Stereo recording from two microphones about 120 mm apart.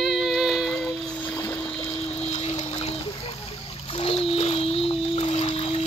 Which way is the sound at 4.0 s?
55° left (ahead or behind).